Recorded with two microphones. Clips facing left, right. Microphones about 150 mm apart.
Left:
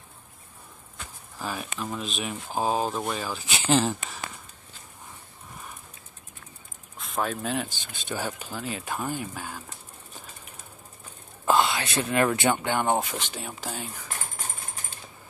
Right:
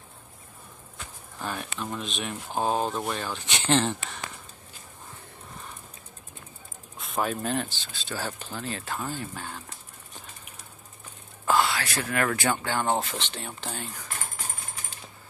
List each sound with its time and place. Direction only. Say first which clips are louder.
1.4 s speech: left 1 dB; 5° left (ahead or behind)
7.0 s speech: right 1 dB; centre (ahead or behind)
7.6 s speech: left 2 dB; 15° left (ahead or behind)
11.4 s speech: left 1 dB; 20° left (ahead or behind)